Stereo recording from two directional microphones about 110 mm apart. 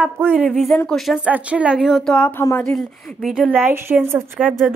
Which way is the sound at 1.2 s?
10° right (ahead or behind).